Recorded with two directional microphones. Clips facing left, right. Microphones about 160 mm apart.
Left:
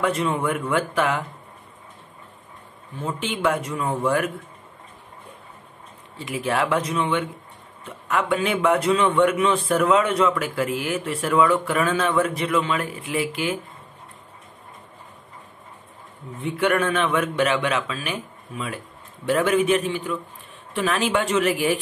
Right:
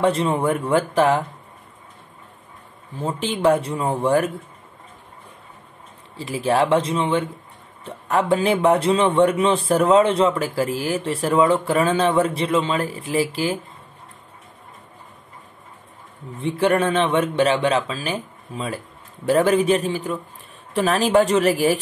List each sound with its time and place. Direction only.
0.0 s a man's voice: 30° right (ahead or behind)
3.0 s a man's voice: 30° right (ahead or behind)
6.1 s a man's voice: 30° right (ahead or behind)
16.4 s a man's voice: 30° right (ahead or behind)